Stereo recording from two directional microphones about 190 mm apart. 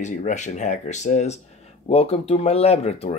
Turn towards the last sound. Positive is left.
turn(degrees=35)  # may be behind; listen again after turning